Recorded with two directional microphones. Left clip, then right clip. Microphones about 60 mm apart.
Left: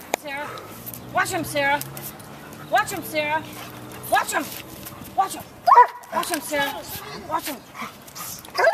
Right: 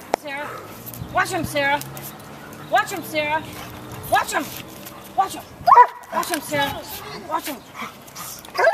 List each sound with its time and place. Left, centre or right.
0.2 s dog: centre
1.1 s speech: centre
8.6 s dog: centre